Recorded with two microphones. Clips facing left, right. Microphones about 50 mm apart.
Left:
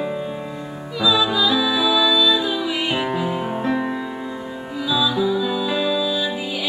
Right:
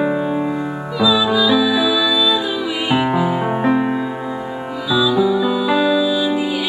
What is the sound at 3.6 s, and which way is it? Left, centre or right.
Music, right.